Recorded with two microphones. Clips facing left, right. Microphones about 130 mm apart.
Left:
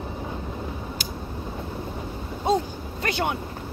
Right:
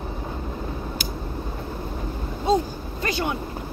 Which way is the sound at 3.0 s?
60° left (ahead or behind).